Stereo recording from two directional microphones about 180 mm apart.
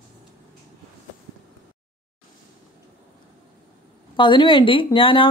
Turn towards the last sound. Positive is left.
turn(degrees=30)  # may be behind; listen again after turning